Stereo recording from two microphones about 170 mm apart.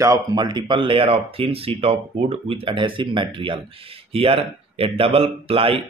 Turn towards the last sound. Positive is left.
turn(degrees=-35)  # may be behind; listen again after turning